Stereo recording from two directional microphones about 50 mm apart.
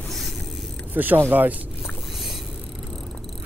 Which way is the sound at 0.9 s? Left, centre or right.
Right.